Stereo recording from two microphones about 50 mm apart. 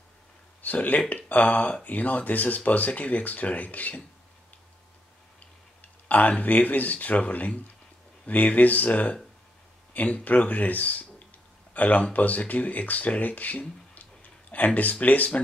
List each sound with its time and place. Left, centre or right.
0.6 s speech: left
5.8 s speech: left